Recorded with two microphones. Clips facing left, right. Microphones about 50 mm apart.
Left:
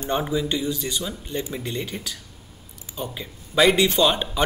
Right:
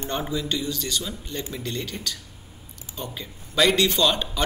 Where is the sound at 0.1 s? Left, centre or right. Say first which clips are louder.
Left 4 dB; centre.